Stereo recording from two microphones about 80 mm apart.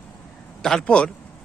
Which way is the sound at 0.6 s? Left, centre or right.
Centre.